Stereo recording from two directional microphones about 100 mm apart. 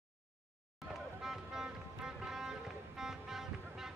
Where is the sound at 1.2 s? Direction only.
5° right (ahead or behind).